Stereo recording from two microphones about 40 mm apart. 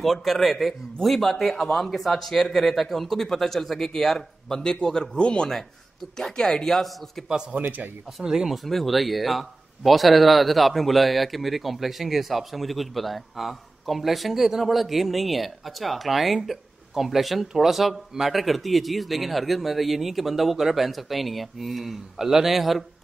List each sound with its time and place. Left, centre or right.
0.0 s speech: centre
7.5 s speech: right
8.2 s speech: centre
8.6 s speech: centre